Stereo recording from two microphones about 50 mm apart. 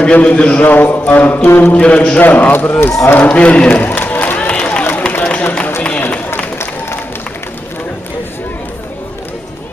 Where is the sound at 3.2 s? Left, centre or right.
Left.